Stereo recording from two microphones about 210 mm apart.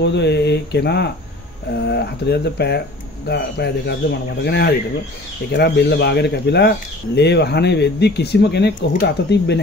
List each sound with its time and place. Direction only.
0.0 s speech: 55° left (ahead or behind)